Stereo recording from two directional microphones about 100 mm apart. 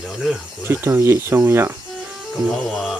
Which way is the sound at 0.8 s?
30° right (ahead or behind).